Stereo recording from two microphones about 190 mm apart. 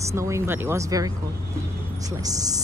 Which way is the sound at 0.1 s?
15° right (ahead or behind).